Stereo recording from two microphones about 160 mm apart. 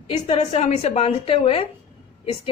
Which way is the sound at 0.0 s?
35° left (ahead or behind).